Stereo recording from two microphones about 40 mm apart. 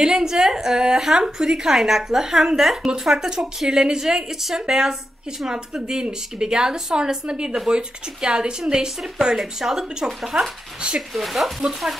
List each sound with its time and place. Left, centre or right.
0.0 s a woman's voice: centre